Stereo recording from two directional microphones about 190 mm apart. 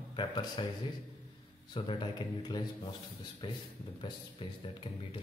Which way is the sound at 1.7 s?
25° left (ahead or behind).